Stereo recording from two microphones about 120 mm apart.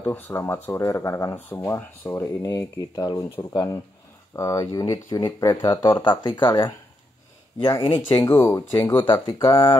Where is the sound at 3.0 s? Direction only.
35° left (ahead or behind).